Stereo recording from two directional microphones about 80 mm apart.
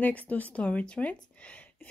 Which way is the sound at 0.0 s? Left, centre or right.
Centre.